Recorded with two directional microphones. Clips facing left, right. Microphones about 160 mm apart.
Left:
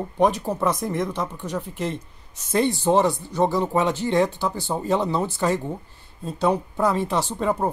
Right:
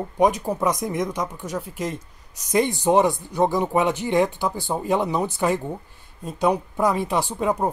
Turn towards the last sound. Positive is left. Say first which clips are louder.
# right 1 dB
turn(degrees=-15)  # may be behind; listen again after turning